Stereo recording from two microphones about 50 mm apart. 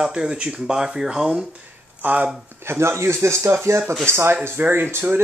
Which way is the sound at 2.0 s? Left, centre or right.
Right.